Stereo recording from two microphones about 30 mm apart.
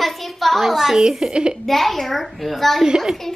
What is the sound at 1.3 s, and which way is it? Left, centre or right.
Speech, right.